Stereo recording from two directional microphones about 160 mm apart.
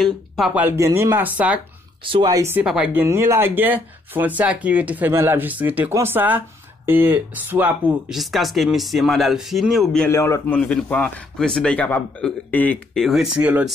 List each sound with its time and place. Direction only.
0.6 s speech: 15° right (ahead or behind)
2.0 s speech: 35° right (ahead or behind)
2.3 s speech: 15° right (ahead or behind)
10.0 s speech: 15° left (ahead or behind); by 13.7 s 10° right (ahead or behind)